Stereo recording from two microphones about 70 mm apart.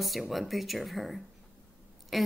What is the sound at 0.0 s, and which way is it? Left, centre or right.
Speech, centre.